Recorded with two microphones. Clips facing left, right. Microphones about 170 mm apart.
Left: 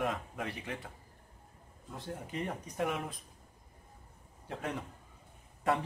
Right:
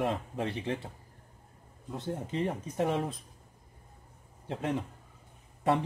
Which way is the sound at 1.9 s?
25° right (ahead or behind).